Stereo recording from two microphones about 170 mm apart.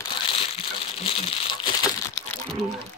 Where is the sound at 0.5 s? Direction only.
35° left (ahead or behind).